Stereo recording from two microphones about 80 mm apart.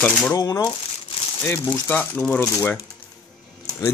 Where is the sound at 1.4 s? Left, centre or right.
Left.